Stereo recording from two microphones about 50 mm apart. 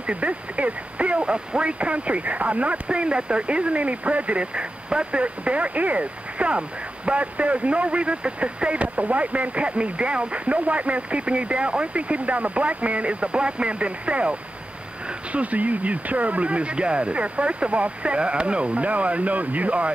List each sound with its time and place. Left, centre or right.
0.0 s speech: right
15.3 s speech: right